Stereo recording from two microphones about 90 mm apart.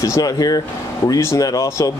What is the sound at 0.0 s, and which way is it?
Speech, 40° left (ahead or behind).